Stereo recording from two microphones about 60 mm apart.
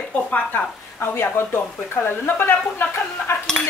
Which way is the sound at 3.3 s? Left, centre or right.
Left.